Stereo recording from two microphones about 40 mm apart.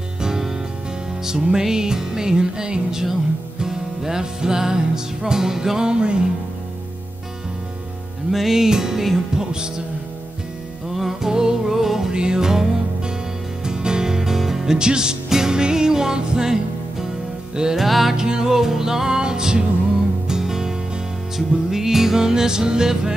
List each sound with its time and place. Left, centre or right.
0.2 s music: centre
8.3 s music: centre
11.0 s music: centre
12.1 s music: right
17.7 s music: centre
18.1 s music: centre